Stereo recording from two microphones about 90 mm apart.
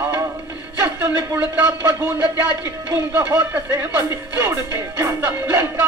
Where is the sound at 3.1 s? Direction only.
20° right (ahead or behind).